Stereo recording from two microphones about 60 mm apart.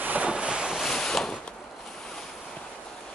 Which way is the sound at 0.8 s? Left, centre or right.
Centre.